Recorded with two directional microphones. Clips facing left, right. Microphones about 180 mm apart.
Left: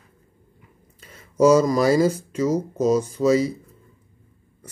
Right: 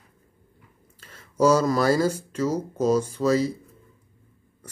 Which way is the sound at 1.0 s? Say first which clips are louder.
Left 4 dB; 10° left (ahead or behind).